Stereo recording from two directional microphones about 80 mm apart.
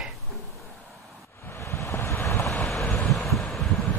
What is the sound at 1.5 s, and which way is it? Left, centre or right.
Vehicle, left.